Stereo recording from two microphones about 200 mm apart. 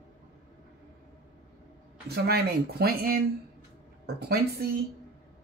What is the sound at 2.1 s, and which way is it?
Speech, 50° right (ahead or behind).